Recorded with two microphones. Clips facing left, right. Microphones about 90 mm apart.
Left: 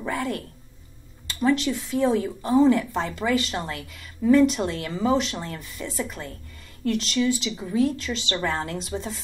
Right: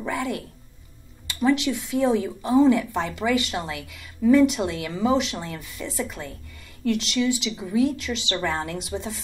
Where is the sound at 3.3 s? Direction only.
15° right (ahead or behind).